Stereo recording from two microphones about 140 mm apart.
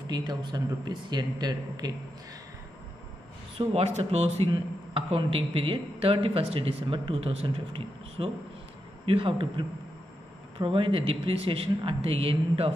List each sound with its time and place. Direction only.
0.0 s speech: 30° right (ahead or behind)
3.5 s speech: 50° right (ahead or behind)